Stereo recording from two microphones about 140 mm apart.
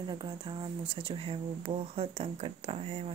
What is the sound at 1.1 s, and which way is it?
Speech, 45° right (ahead or behind).